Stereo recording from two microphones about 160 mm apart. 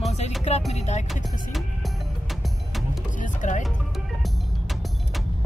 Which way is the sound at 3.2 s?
55° left (ahead or behind).